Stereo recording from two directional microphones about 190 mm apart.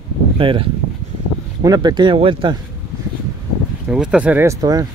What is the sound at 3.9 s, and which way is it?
Speech, 5° right (ahead or behind).